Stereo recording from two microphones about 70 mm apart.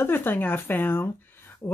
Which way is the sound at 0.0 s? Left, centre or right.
Left.